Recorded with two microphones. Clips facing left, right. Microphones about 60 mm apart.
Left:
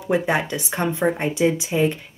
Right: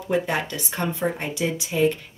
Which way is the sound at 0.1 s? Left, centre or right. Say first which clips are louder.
Left 3 dB; left.